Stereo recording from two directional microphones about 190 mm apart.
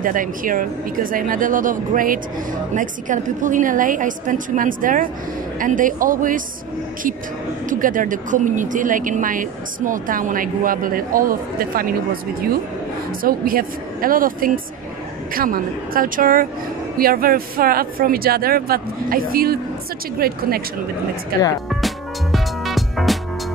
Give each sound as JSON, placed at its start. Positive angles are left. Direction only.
{"t": 0.0, "sound": "speech", "side_deg": -45}
{"t": 7.8, "sound": "speech", "side_deg": -45}
{"t": 13.2, "sound": "speech", "side_deg": -50}
{"t": 21.6, "sound": "music", "side_deg": 0}